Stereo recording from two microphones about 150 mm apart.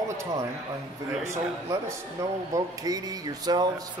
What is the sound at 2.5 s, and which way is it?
A man's voice, 25° right (ahead or behind).